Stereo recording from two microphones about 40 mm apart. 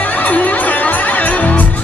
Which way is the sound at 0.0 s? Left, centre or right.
Left.